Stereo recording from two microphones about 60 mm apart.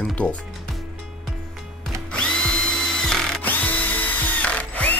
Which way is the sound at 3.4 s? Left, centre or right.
Left.